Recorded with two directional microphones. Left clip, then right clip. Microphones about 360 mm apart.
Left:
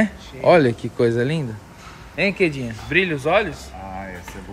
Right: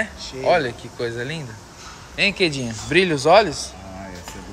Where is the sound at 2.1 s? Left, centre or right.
Centre.